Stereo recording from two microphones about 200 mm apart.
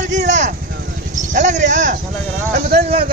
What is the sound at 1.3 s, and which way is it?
Speech, 35° right (ahead or behind).